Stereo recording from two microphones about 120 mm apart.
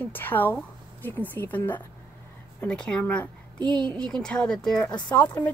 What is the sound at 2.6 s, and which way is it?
A woman's voice, 10° left (ahead or behind).